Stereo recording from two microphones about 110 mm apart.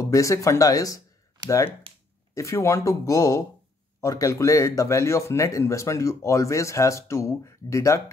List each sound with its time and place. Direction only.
0.0 s speech: 30° left (ahead or behind)
1.9 s a sound: 55° right (ahead or behind)
2.3 s speech: 25° left (ahead or behind)